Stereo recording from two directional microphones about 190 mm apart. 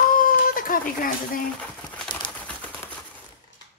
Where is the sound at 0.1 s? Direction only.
45° left (ahead or behind).